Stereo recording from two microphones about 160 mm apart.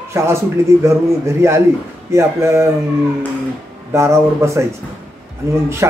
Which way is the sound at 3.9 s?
15° right (ahead or behind).